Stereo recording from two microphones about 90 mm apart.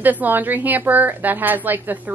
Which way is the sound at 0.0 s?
20° right (ahead or behind).